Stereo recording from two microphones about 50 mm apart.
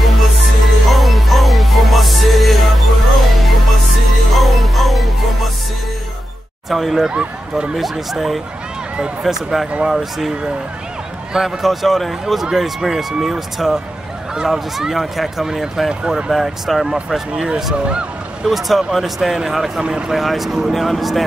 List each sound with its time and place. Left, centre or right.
0.0 s music: centre
6.7 s speech: centre
7.1 s speech: centre
8.1 s speech: centre
11.3 s speech: centre
16.3 s speech: centre
17.7 s speech: centre
18.4 s speech: centre
19.8 s speech: centre
20.2 s speech: centre